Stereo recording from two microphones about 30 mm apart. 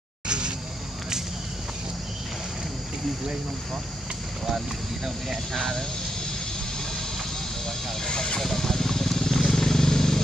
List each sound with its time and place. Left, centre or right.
5.5 s speech: centre
8.1 s speech: left
8.4 s a sound: centre
9.5 s vehicle: centre